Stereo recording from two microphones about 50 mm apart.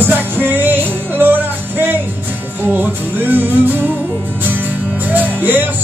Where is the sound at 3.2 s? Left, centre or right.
Right.